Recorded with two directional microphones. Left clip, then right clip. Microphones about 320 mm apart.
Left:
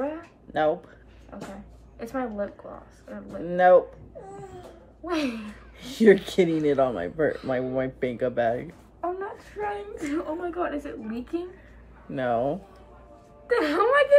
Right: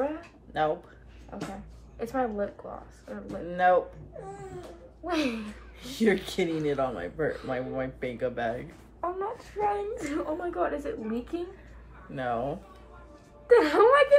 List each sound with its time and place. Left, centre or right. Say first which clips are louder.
1.3 s speech: right 1 dB; centre
3.4 s speech: left 6 dB; left
5.0 s speech: left 1 dB; centre
5.8 s speech: left 8 dB; left
9.0 s speech: left 1 dB; centre
12.1 s speech: left 5 dB; left
13.5 s a woman's voice: right 3 dB; centre